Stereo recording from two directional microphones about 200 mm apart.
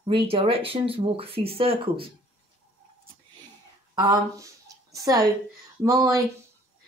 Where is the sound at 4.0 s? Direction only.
20° right (ahead or behind).